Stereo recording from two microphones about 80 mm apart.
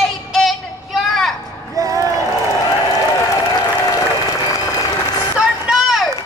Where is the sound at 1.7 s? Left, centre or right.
Right.